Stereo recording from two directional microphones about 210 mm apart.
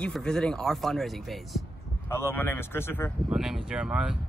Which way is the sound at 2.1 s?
10° left (ahead or behind).